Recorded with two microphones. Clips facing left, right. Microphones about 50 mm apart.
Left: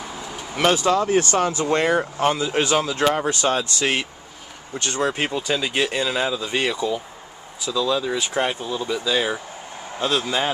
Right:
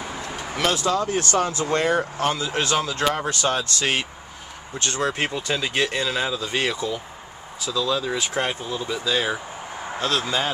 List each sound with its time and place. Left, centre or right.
0.8 s speech: left
4.7 s a man's voice: centre